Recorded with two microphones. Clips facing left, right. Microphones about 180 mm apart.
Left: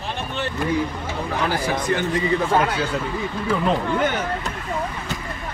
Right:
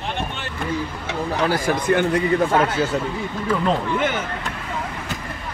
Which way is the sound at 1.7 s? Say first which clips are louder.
Right 3 dB; 55° right (ahead or behind).